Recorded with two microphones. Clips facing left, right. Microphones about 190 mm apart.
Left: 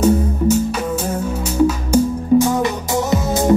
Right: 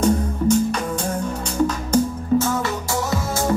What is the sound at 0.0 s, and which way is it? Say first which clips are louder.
Music: left 4 dB; 5° left (ahead or behind).